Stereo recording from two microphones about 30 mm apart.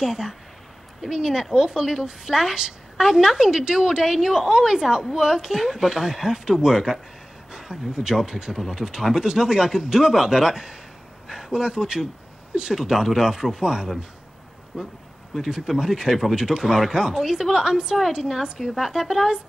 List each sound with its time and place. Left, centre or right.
0.0 s speech: centre
1.1 s speech: right